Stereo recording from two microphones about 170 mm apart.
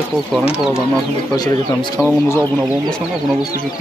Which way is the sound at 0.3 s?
5° right (ahead or behind).